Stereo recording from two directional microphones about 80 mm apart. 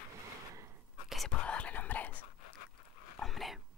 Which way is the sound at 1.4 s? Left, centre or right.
Centre.